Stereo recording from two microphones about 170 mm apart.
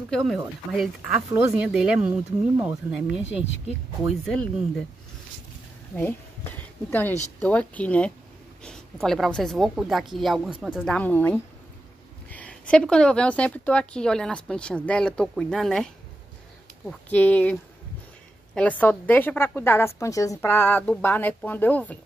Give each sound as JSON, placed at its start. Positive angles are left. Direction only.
{"t": 0.1, "sound": "a woman's voice", "side_deg": 0}
{"t": 2.5, "sound": "speech", "side_deg": -15}
{"t": 2.9, "sound": "a woman's voice", "side_deg": -5}
{"t": 5.9, "sound": "a woman's voice", "side_deg": 10}
{"t": 11.0, "sound": "a woman's voice", "side_deg": 10}